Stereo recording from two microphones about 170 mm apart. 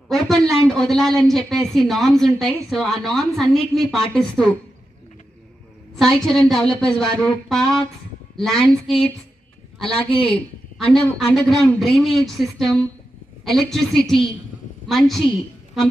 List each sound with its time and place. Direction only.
0.1 s speech: centre (ahead or behind)
5.9 s speech: centre (ahead or behind)
10.1 s a woman's voice: 30° left (ahead or behind)
10.9 s a woman's voice: centre (ahead or behind)